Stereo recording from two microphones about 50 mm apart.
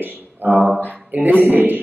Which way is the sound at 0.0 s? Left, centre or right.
Right.